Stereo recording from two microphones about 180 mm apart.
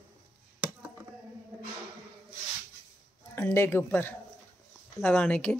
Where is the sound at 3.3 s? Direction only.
15° left (ahead or behind).